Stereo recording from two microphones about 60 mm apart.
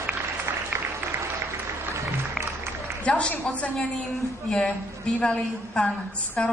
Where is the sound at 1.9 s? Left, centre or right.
Right.